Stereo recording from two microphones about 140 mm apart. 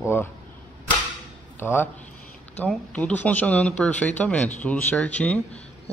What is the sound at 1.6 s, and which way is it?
A man's voice, 15° left (ahead or behind).